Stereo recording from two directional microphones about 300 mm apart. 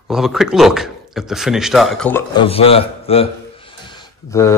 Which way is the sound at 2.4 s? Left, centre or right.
Centre.